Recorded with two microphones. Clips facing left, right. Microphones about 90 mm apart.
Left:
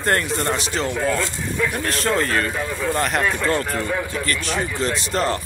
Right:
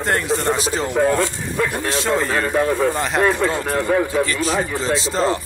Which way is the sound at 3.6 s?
35° right (ahead or behind).